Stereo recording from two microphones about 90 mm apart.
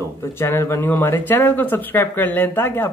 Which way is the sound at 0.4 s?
30° left (ahead or behind).